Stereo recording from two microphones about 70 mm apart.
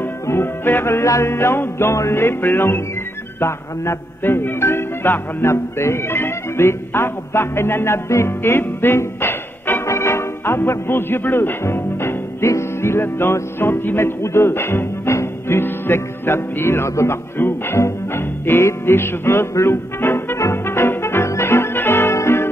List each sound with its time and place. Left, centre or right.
0.0 s music: left